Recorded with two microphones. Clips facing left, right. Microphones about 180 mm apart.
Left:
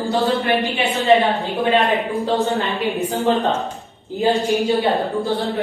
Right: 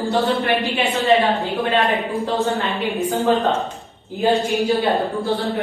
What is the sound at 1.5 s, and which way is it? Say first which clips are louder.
Speech: left 4 dB; 20° left (ahead or behind).